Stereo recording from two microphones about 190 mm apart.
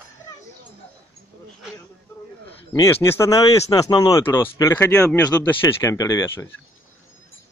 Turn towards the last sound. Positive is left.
turn(degrees=15)  # may be behind; listen again after turning